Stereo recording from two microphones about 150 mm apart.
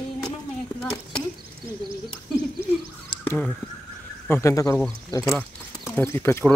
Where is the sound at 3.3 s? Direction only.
10° left (ahead or behind).